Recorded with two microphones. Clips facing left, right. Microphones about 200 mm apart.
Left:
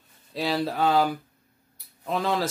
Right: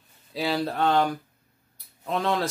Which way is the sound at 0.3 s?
Centre (ahead or behind).